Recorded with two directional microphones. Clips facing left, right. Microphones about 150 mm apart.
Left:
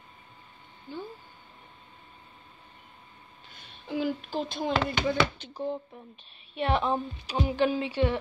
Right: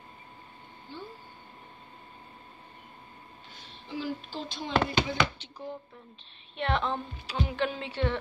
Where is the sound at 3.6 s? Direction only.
55° left (ahead or behind).